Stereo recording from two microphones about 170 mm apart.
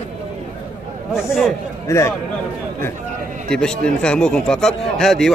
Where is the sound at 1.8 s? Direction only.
15° left (ahead or behind).